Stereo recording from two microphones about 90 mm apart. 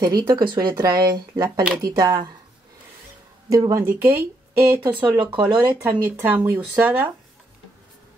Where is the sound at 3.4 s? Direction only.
40° right (ahead or behind).